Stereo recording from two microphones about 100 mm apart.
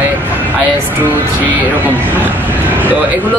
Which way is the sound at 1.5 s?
15° right (ahead or behind).